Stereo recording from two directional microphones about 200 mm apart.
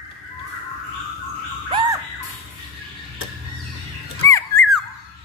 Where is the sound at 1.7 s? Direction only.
25° right (ahead or behind).